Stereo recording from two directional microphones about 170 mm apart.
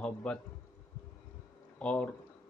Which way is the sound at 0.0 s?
5° left (ahead or behind).